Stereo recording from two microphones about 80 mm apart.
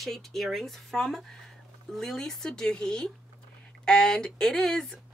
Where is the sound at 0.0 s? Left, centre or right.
Centre.